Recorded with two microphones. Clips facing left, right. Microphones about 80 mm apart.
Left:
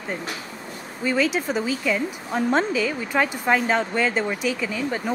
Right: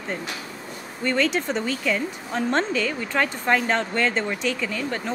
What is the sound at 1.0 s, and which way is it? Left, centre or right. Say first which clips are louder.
A woman's voice: left 1 dB; centre.